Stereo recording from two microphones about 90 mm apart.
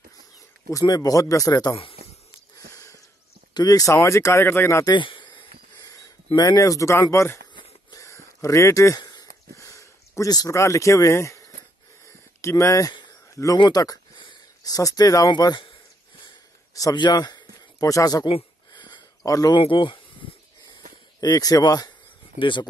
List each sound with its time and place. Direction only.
0.7 s speech: 45° left (ahead or behind)
2.5 s a sound: 40° left (ahead or behind)
3.5 s speech: 45° left (ahead or behind); by 4.8 s 25° left (ahead or behind)
4.9 s a sound: 65° left (ahead or behind); by 11.4 s 35° left (ahead or behind)
12.4 s speech: 30° left (ahead or behind)
13.7 s speech: 45° left (ahead or behind)
16.9 s a man's voice: 55° left (ahead or behind)
18.7 s a sound: 55° left (ahead or behind)
19.2 s speech: 40° left (ahead or behind)
19.6 s speech: 70° left (ahead or behind)
21.2 s speech: 45° left (ahead or behind)
22.4 s speech: 60° left (ahead or behind)